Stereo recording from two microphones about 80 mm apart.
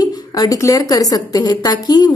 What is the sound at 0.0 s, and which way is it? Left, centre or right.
A woman's voice, left.